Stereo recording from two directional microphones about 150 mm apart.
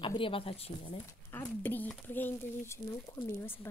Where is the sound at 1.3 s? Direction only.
10° left (ahead or behind).